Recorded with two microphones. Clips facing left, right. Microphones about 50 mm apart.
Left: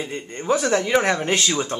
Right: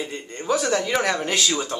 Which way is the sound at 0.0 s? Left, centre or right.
Left.